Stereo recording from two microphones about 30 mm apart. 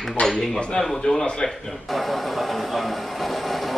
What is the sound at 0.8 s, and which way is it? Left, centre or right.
Speech, left.